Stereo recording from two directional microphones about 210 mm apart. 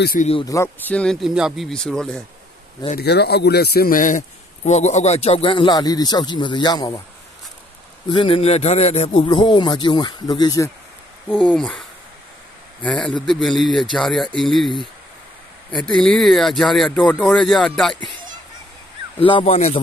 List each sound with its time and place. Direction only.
0.0 s speech: 45° left (ahead or behind)
0.3 s speech: 20° left (ahead or behind); by 2.2 s 5° left (ahead or behind)
3.0 s speech: 50° left (ahead or behind); by 7.0 s 20° left (ahead or behind)
8.1 s speech: 25° left (ahead or behind)
11.2 s speech: 5° left (ahead or behind)
12.8 s speech: 5° left (ahead or behind)
15.8 s speech: 5° left (ahead or behind)
19.1 s speech: 25° left (ahead or behind)